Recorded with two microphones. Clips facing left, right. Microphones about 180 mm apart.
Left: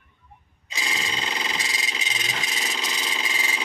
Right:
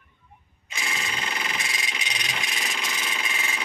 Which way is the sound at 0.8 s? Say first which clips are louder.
Left 2 dB; 20° left (ahead or behind).